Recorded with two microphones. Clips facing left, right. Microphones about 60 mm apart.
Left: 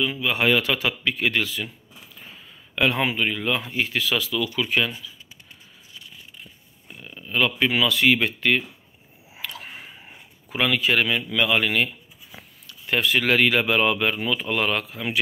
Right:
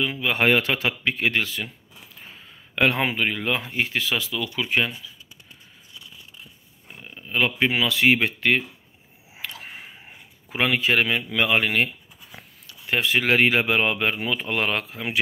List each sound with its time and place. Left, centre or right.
0.0 s speech: right
6.9 s speech: right
9.4 s a sound: right
10.6 s speech: right